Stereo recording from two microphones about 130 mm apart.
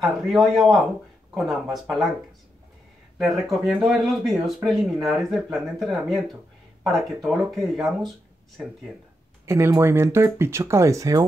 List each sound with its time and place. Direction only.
0.0 s speech: centre (ahead or behind)
3.2 s speech: centre (ahead or behind)
7.2 s speech: centre (ahead or behind)
9.5 s speech: 20° right (ahead or behind)